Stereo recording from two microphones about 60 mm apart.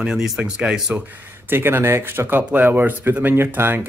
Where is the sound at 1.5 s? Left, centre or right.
Right.